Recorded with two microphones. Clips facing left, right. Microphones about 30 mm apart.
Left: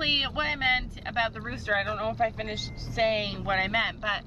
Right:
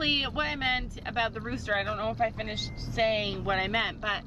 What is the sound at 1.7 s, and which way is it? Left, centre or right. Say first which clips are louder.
Speech: left 2 dB; centre.